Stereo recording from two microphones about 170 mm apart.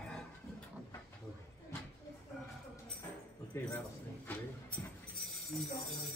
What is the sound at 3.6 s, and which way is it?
Speech, 15° left (ahead or behind).